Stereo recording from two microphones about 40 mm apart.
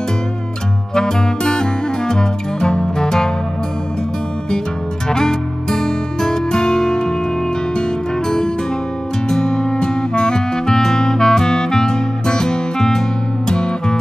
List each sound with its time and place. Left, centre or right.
0.9 s music: centre
5.1 s music: centre
9.3 s music: centre